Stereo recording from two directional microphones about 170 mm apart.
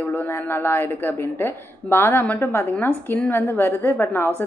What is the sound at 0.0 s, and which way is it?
A woman's voice, 10° left (ahead or behind).